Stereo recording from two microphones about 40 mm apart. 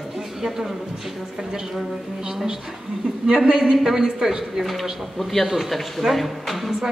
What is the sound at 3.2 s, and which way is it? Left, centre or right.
Speech, right.